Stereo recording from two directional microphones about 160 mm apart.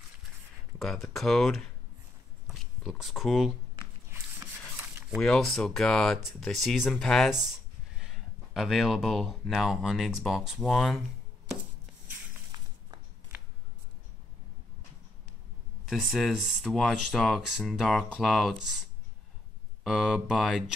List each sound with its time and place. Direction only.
0.7 s speech: centre (ahead or behind)
4.1 s rub: 15° right (ahead or behind)
5.1 s speech: 5° left (ahead or behind)
15.9 s speech: centre (ahead or behind)
19.8 s speech: centre (ahead or behind)